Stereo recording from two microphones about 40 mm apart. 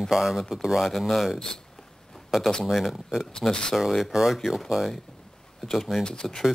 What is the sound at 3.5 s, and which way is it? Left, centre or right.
Speech, centre.